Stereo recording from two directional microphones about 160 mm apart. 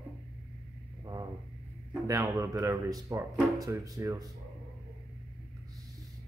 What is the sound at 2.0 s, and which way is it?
Speech, 20° right (ahead or behind).